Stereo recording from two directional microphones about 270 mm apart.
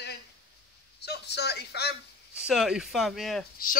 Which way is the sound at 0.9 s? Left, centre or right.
Left.